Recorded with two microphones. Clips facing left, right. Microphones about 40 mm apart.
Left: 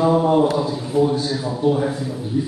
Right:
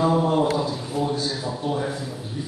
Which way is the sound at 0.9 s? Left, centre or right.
Left.